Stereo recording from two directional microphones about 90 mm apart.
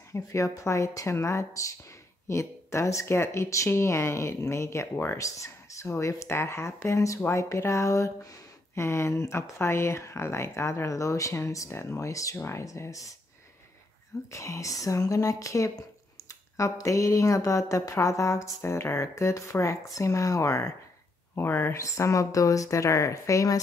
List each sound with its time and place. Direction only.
0.1 s speech: 35° left (ahead or behind)
14.3 s speech: 35° left (ahead or behind)
21.4 s speech: 25° left (ahead or behind)